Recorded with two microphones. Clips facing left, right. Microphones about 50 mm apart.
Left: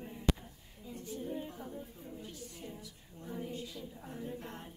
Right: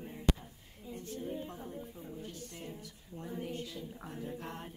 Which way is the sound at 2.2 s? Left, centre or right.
Right.